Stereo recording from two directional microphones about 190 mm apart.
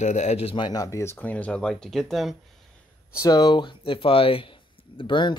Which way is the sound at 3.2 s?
20° left (ahead or behind).